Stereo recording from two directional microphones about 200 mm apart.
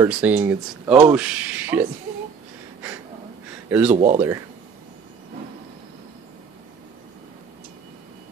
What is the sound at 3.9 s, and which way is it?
Speech, 35° right (ahead or behind).